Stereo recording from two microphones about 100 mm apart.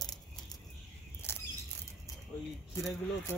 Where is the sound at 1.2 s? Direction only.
25° left (ahead or behind).